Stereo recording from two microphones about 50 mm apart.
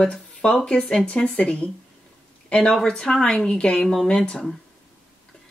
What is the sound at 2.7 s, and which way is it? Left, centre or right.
Speech, centre.